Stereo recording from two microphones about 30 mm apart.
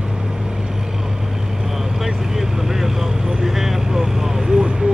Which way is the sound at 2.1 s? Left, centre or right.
Centre.